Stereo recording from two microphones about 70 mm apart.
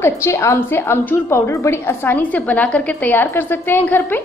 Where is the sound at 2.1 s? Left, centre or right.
Left.